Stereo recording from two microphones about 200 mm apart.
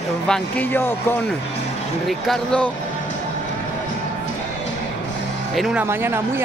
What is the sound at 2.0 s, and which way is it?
Speech, centre (ahead or behind).